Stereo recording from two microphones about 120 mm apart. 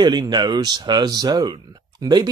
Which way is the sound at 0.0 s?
35° right (ahead or behind).